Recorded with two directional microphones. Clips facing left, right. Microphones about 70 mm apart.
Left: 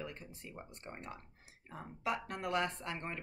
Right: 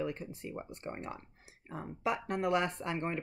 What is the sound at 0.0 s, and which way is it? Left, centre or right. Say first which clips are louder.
Speech: right 9 dB; centre.